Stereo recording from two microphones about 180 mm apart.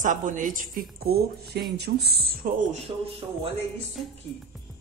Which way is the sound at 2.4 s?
50° right (ahead or behind).